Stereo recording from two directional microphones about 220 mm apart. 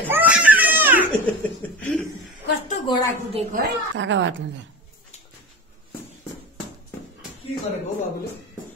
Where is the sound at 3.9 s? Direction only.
55° right (ahead or behind).